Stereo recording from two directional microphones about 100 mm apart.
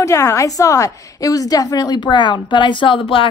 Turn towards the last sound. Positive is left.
turn(degrees=60)  # may be behind; listen again after turning